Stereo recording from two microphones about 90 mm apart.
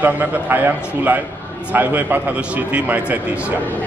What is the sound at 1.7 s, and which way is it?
A man's voice, 20° right (ahead or behind).